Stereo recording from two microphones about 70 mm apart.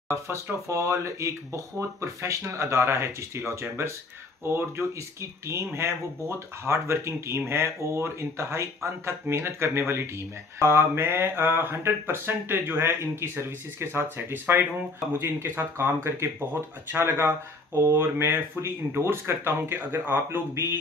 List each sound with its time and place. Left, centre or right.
0.1 s speech: right